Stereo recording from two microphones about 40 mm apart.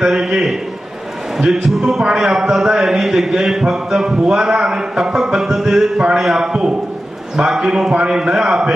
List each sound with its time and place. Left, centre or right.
0.0 s a man's voice: centre
7.9 s a man's voice: right